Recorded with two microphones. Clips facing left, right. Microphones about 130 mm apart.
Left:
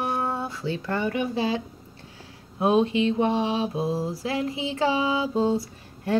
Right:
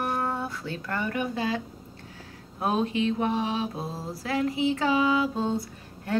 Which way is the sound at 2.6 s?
25° left (ahead or behind).